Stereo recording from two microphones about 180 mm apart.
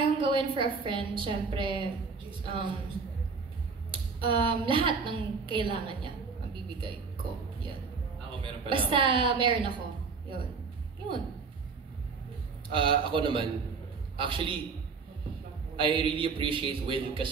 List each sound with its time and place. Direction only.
0.0 s a woman's voice: 30° right (ahead or behind)
3.9 s a woman's voice: 30° right (ahead or behind)
8.3 s a woman's voice: 30° right (ahead or behind)
12.7 s a woman's voice: 30° right (ahead or behind)
15.7 s a woman's voice: 30° right (ahead or behind)